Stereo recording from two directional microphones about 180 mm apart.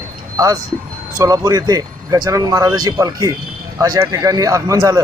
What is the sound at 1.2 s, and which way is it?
Speech, 20° right (ahead or behind).